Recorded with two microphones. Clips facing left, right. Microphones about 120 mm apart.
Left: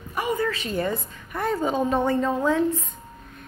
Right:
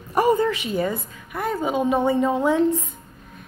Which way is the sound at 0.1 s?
40° right (ahead or behind).